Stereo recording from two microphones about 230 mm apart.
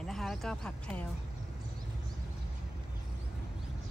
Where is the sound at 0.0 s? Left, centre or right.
Centre.